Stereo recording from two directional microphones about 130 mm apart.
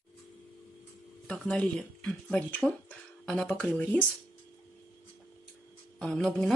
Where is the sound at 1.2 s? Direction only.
5° left (ahead or behind).